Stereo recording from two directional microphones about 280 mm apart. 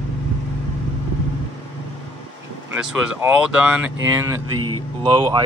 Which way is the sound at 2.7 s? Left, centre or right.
Centre.